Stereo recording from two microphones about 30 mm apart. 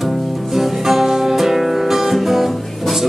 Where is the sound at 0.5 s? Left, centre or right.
Centre.